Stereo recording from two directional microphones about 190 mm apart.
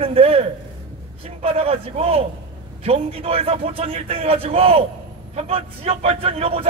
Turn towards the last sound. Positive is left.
turn(degrees=-30)  # may be behind; listen again after turning